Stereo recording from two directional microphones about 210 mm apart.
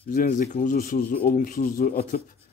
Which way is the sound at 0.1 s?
40° left (ahead or behind).